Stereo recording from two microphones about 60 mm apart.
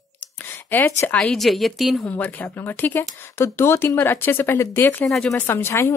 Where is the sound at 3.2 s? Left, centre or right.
Left.